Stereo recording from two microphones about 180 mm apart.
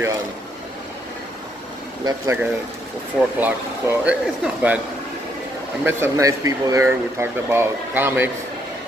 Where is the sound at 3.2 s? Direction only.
Centre (ahead or behind).